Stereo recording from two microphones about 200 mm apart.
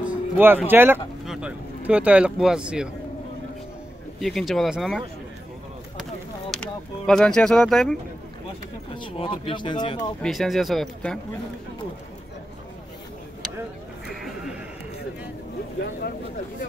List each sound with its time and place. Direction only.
0.0 s a sound: 10° right (ahead or behind)
0.7 s speech: 10° right (ahead or behind)
4.2 s speech: centre (ahead or behind)
6.5 s speech: 5° left (ahead or behind)
8.9 s speech: 25° left (ahead or behind)
10.2 s speech: centre (ahead or behind)
14.0 s a sound: centre (ahead or behind)